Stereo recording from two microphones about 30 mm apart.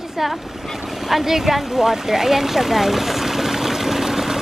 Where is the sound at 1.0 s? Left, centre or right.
Centre.